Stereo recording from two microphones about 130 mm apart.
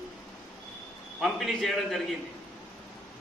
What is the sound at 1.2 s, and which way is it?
Speech, centre (ahead or behind).